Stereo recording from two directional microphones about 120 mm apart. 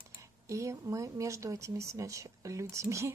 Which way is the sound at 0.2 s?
25° right (ahead or behind).